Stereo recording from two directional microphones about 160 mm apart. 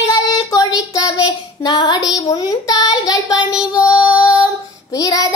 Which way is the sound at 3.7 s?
20° left (ahead or behind).